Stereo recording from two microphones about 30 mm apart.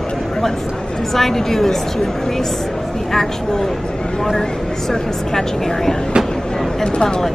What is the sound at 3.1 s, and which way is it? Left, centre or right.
Speech, centre.